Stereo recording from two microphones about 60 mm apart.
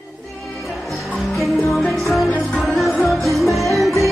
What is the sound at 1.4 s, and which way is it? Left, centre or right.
Music, centre.